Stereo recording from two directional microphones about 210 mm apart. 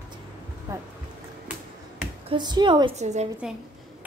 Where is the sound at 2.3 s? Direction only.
20° right (ahead or behind).